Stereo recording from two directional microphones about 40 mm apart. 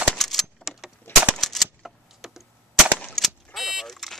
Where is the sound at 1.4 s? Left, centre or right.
Centre.